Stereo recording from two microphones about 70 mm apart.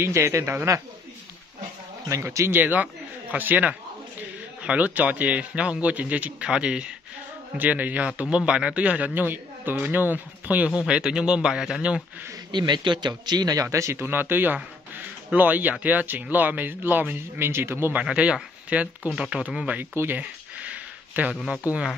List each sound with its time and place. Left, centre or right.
0.0 s speech: right
2.0 s speech: right
2.6 s speech: right
12.4 s a man's voice: right
13.6 s speech: right
14.0 s speech: right
18.0 s speech: centre
20.0 s a sound: right